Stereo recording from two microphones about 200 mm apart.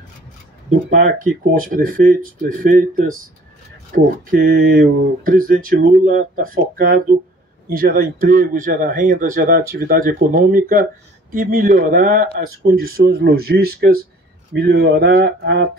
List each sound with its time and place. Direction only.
0.7 s speech: 40° right (ahead or behind)
7.7 s speech: 45° right (ahead or behind)